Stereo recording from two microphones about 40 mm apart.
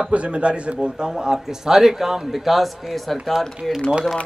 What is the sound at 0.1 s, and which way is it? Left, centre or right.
A man's voice, right.